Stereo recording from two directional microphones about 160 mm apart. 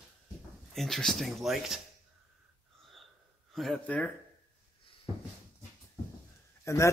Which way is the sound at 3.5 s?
Centre (ahead or behind).